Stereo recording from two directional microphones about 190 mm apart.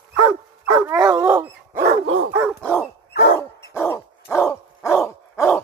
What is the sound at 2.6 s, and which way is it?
Dog, 5° left (ahead or behind).